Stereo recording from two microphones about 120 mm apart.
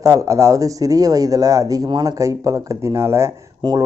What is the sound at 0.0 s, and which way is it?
Speech, 25° right (ahead or behind).